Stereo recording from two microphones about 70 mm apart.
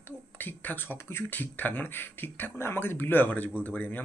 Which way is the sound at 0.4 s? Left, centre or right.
Left.